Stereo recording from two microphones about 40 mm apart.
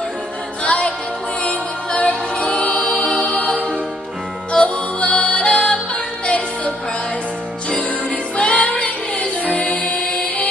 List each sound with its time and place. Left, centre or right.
0.7 s music: left
8.4 s music: left